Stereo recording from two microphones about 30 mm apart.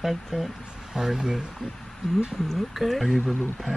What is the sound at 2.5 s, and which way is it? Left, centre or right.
Speech, centre.